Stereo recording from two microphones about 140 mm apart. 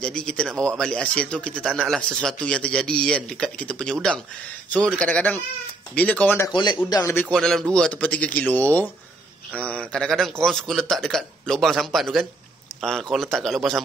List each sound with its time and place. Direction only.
0.0 s speech: 5° left (ahead or behind)
6.5 s a man's voice: 30° left (ahead or behind)
7.2 s speech: 5° left (ahead or behind)